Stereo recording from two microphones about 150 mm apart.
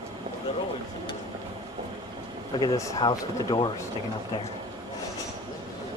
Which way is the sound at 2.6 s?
25° left (ahead or behind).